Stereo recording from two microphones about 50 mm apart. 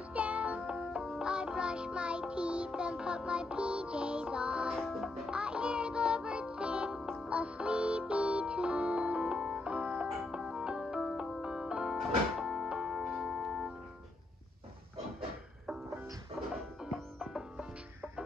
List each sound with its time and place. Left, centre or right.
0.1 s music: right
4.7 s music: centre
5.0 s music: centre
10.0 s music: centre
15.1 s a sound: centre